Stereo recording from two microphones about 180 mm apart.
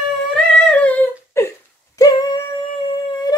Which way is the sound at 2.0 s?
20° left (ahead or behind).